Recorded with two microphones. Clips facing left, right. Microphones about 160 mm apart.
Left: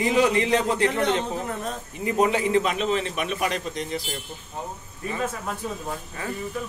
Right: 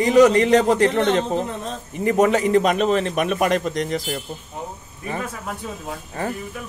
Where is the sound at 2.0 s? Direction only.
55° right (ahead or behind).